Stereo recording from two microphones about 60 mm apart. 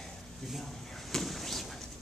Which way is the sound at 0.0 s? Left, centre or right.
Centre.